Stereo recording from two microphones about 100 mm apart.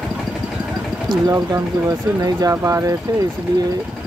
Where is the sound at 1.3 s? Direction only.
35° right (ahead or behind).